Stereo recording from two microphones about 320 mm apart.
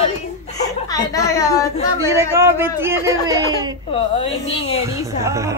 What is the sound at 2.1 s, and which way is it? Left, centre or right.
Speech, centre.